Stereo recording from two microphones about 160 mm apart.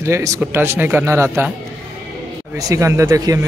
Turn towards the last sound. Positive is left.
turn(degrees=-20)  # may be behind; listen again after turning